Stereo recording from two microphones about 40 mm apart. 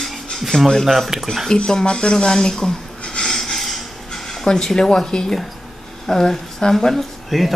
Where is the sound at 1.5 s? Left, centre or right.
Centre.